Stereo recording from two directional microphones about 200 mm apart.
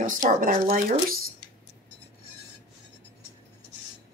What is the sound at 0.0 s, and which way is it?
Speech, 40° right (ahead or behind).